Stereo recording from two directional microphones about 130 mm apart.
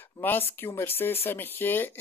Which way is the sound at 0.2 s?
15° left (ahead or behind).